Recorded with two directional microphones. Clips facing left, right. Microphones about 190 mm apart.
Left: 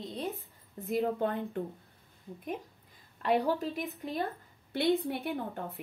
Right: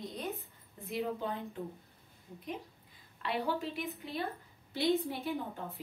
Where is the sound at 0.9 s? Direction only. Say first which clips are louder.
Left 6 dB; 55° left (ahead or behind).